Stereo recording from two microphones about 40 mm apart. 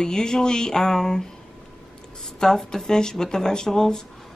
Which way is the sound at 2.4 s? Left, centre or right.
Centre.